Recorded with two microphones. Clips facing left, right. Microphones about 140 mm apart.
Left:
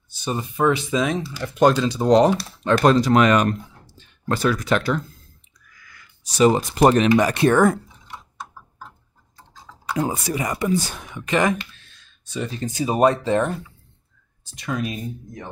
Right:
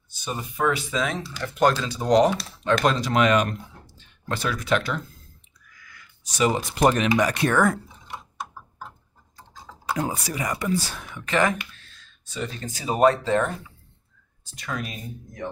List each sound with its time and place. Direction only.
0.2 s speech: 30° left (ahead or behind)
2.0 s speech: 30° left (ahead or behind)
6.2 s speech: 35° left (ahead or behind)
10.0 s speech: 25° left (ahead or behind)
12.7 s speech: 15° left (ahead or behind)
14.5 s speech: 20° left (ahead or behind)